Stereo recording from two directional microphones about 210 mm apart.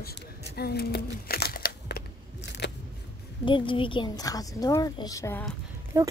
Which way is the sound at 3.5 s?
25° left (ahead or behind).